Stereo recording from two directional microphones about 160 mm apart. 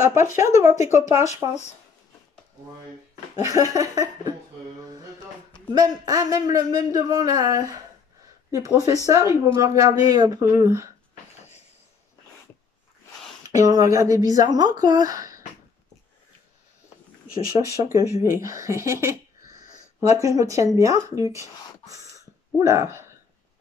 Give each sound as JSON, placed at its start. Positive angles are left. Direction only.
{"t": 0.4, "sound": "a woman's voice", "side_deg": -20}
{"t": 1.0, "sound": "speech", "side_deg": 45}
{"t": 3.4, "sound": "a woman's voice", "side_deg": -20}
{"t": 5.7, "sound": "a woman's voice", "side_deg": -25}
{"t": 13.5, "sound": "a woman's voice", "side_deg": -20}
{"t": 17.3, "sound": "speech", "side_deg": 65}
{"t": 18.5, "sound": "speech", "side_deg": -20}
{"t": 20.2, "sound": "speech", "side_deg": -20}